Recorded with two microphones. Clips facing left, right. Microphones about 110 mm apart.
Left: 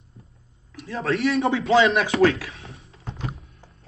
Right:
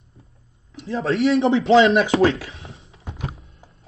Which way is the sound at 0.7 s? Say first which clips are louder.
Right 3 dB; 30° right (ahead or behind).